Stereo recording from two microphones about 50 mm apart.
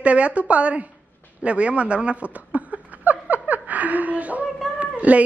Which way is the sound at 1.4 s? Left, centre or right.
Right.